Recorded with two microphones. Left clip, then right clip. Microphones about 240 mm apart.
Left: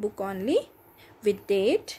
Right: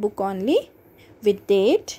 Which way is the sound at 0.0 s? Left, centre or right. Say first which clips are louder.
Right 6 dB; centre.